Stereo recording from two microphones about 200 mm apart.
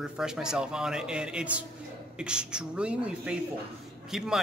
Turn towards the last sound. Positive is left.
turn(degrees=0)  # may be behind; listen again after turning